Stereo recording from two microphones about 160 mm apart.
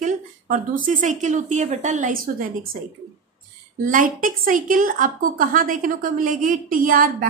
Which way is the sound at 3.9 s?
60° right (ahead or behind).